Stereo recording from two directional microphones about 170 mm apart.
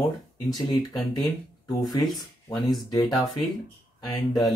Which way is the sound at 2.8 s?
25° left (ahead or behind).